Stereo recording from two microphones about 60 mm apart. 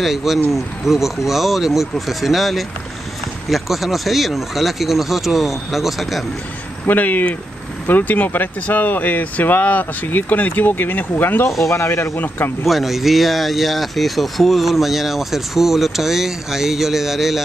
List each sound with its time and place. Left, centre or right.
0.0 s speech: centre
6.9 s speech: left
11.7 s speech: left
12.2 s speech: left
12.6 s speech: centre